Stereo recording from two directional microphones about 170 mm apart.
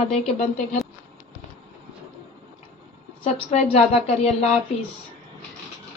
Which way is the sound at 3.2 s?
40° left (ahead or behind).